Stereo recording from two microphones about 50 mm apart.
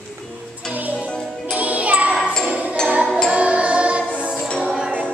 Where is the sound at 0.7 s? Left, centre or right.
Right.